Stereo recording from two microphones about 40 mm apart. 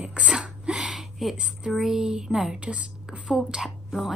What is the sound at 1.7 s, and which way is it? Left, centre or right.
Speech, centre.